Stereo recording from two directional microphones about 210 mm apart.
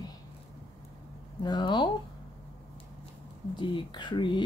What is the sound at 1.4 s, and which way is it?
Speech, 20° left (ahead or behind).